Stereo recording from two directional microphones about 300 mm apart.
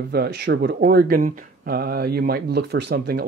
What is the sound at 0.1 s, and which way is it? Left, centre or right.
Speech, right.